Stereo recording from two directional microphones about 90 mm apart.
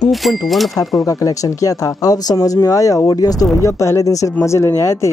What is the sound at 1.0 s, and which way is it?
A woman's voice, 40° left (ahead or behind).